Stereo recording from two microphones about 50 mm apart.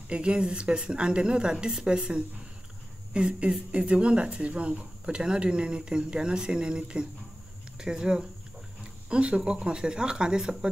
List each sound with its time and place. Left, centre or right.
0.1 s speech: centre